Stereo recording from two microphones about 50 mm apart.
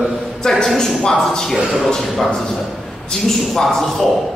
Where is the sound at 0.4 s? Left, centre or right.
Centre.